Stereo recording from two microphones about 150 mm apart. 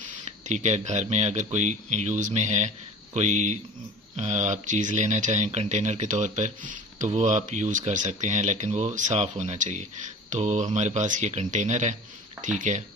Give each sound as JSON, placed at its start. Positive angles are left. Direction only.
{"t": 0.5, "sound": "speech", "side_deg": -50}